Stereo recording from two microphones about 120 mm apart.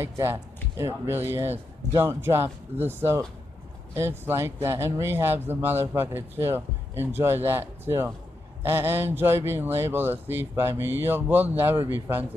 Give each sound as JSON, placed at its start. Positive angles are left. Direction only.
{"t": 0.0, "sound": "speech", "side_deg": -20}